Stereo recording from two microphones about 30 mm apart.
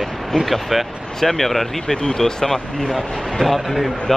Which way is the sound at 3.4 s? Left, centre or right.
Centre.